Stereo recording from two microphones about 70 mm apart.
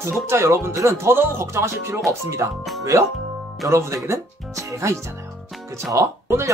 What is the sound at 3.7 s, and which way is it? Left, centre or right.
Speech, right.